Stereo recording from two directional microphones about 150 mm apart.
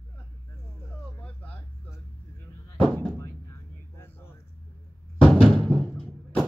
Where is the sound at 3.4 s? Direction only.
15° left (ahead or behind).